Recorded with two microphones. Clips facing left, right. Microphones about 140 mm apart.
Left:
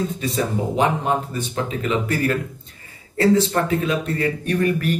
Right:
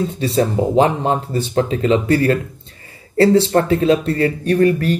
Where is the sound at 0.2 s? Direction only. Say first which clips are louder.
Right 6 dB; 30° right (ahead or behind).